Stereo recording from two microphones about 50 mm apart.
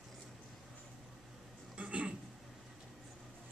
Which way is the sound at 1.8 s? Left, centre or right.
Right.